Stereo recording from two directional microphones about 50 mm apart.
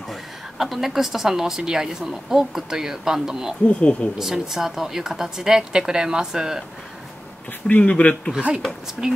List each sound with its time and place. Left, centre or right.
0.1 s a woman's voice: centre
3.6 s speech: left
4.2 s a woman's voice: centre
7.6 s speech: left
8.4 s speech: right
9.0 s a woman's voice: centre